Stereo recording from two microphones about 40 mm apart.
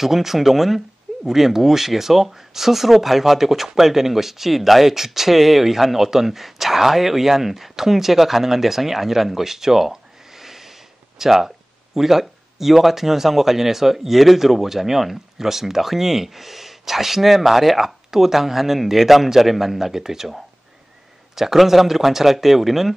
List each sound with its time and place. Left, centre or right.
0.0 s speech: centre
21.4 s speech: centre